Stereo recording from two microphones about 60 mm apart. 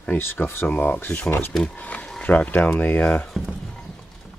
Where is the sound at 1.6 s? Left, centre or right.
Left.